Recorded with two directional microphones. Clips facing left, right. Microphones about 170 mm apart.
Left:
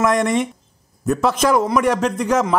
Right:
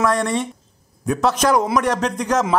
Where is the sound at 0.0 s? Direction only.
20° left (ahead or behind).